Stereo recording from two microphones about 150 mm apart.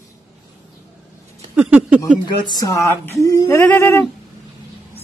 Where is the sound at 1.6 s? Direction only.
10° right (ahead or behind).